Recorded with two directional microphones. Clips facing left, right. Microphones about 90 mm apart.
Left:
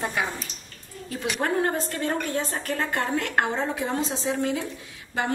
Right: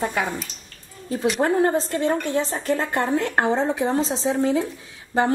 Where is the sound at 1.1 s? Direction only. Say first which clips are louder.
Right 6 dB; 25° right (ahead or behind).